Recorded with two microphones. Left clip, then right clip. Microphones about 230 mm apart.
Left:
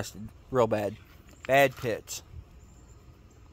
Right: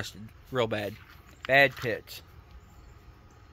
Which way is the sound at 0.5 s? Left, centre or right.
Centre.